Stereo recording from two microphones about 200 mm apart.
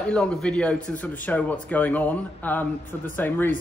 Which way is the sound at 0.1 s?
5° left (ahead or behind).